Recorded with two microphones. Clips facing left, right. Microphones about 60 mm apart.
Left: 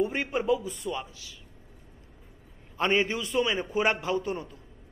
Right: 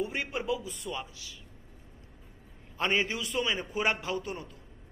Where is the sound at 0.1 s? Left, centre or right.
Left.